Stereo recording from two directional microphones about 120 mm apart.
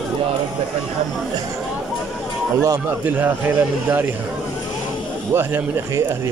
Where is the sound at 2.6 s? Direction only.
15° right (ahead or behind).